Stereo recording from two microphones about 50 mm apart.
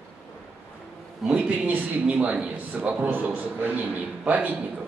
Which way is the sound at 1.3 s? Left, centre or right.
Right.